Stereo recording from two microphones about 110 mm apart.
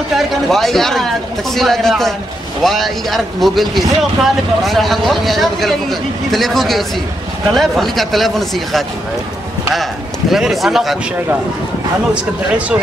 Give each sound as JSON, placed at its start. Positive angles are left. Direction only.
{"t": 0.1, "sound": "speech", "side_deg": 0}
{"t": 10.3, "sound": "speech", "side_deg": 0}
{"t": 12.1, "sound": "speech", "side_deg": -10}